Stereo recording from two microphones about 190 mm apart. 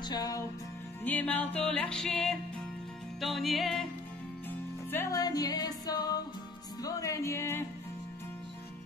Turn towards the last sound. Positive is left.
turn(degrees=15)  # may be behind; listen again after turning